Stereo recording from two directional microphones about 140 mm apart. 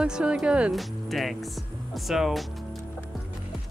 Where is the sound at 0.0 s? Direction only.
5° right (ahead or behind).